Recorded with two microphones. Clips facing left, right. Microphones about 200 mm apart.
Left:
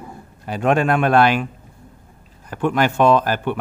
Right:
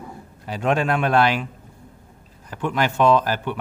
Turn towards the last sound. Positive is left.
turn(degrees=55)  # may be behind; listen again after turning